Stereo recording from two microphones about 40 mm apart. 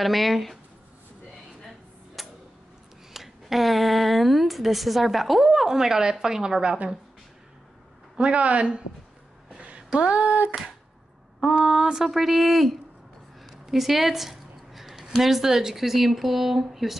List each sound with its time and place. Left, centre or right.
0.0 s speech: centre
2.2 s tick-tock: centre
3.1 s a woman's voice: centre
8.2 s speech: right
9.5 s a sound: right
9.9 s speech: right
11.4 s speech: centre
13.4 s a sound: centre
15.1 s speech: centre